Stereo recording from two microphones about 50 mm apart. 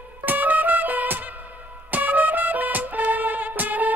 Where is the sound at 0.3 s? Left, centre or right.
Right.